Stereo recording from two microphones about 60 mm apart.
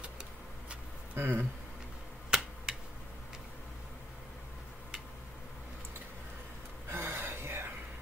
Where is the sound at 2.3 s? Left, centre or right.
Centre.